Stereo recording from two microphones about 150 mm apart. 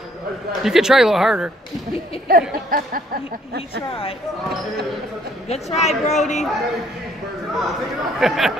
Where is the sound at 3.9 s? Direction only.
40° left (ahead or behind).